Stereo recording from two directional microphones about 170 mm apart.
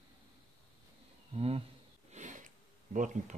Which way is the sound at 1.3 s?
35° right (ahead or behind).